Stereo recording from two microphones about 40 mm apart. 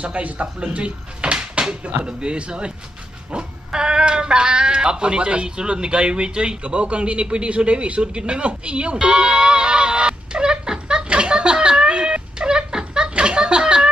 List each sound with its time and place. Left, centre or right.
0.0 s speech: right
9.0 s goat: right
11.1 s a sound: right